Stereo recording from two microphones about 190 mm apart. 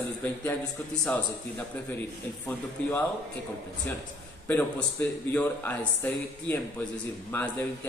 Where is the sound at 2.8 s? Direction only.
5° left (ahead or behind).